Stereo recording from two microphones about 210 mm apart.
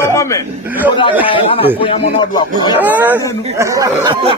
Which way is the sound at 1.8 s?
25° left (ahead or behind).